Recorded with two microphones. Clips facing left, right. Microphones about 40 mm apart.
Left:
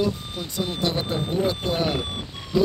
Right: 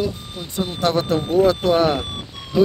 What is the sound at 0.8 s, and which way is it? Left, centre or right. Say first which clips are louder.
Speech: right 8 dB; right.